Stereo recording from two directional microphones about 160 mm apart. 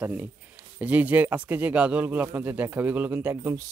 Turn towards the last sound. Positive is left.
turn(degrees=-10)  # may be behind; listen again after turning